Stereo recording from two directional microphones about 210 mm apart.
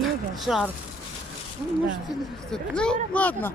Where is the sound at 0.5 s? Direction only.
Centre (ahead or behind).